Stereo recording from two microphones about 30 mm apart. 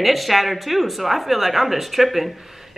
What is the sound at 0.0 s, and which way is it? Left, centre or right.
Speech, centre.